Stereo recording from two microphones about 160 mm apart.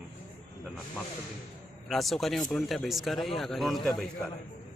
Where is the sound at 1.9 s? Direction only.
Centre (ahead or behind).